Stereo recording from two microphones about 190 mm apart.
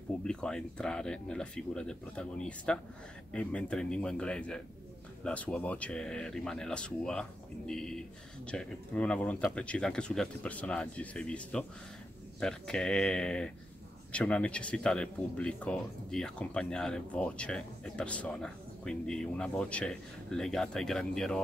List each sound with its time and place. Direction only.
0.2 s speech: 5° left (ahead or behind)